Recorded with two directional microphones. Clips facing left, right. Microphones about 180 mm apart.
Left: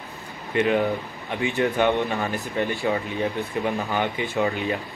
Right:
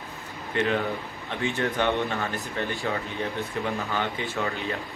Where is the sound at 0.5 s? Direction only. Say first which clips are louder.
Left 5 dB; 15° left (ahead or behind).